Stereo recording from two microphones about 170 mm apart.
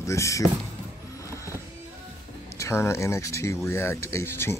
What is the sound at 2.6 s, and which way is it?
Speech, 15° left (ahead or behind).